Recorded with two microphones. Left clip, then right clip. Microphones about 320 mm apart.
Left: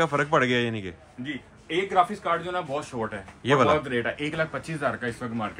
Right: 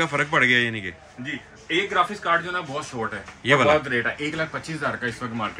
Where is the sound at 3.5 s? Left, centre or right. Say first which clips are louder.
Right 3 dB; centre.